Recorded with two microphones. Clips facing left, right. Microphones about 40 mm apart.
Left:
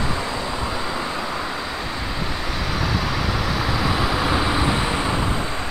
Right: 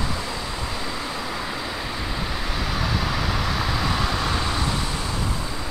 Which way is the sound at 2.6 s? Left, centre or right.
Centre.